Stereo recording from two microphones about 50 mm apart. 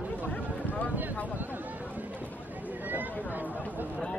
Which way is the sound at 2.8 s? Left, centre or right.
Right.